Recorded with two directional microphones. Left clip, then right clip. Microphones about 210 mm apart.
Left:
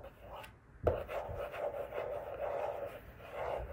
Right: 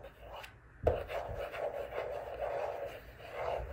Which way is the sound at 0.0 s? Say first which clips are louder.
Right 1 dB; 25° left (ahead or behind).